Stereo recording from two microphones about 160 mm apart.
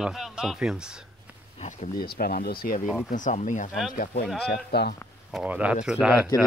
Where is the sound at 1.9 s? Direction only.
65° left (ahead or behind).